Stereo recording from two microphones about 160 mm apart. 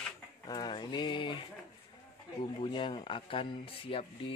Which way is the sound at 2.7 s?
30° left (ahead or behind).